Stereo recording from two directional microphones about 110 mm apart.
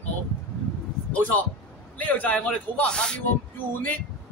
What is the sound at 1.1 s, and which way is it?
Speech, 15° left (ahead or behind).